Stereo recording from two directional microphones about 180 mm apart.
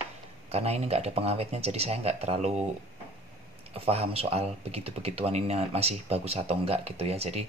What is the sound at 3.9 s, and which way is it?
Speech, 35° right (ahead or behind).